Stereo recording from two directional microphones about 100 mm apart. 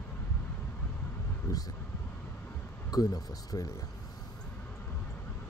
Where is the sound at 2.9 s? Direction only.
40° left (ahead or behind).